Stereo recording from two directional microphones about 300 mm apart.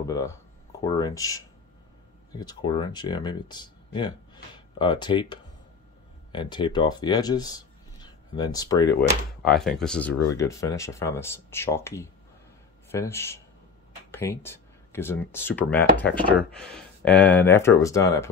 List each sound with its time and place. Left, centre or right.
0.0 s speech: centre
9.4 s speech: centre